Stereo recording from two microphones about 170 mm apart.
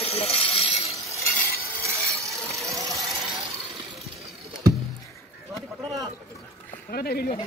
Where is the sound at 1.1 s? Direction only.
15° left (ahead or behind).